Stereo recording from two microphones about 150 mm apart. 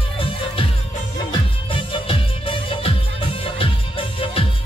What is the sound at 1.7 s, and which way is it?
Music, 35° left (ahead or behind).